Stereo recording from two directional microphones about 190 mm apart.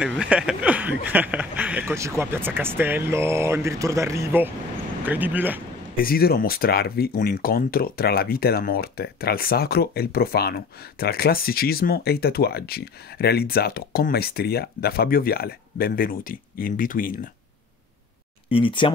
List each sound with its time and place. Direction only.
0.0 s speech: 5° right (ahead or behind)
5.9 s speech: 50° left (ahead or behind)
18.5 s speech: 25° left (ahead or behind)